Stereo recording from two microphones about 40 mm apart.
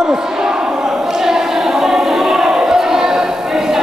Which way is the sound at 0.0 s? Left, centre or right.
Centre.